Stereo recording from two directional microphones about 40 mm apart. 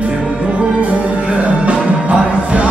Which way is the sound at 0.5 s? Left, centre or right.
Right.